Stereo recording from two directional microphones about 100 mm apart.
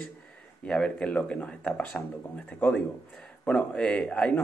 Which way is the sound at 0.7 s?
10° left (ahead or behind).